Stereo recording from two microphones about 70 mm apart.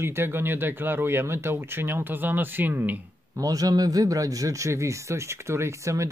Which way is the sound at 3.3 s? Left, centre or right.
Right.